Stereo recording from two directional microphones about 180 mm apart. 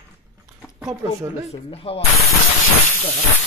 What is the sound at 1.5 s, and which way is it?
Speech, 35° left (ahead or behind).